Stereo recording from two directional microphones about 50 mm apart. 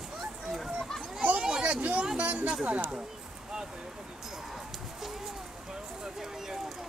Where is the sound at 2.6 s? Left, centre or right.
Right.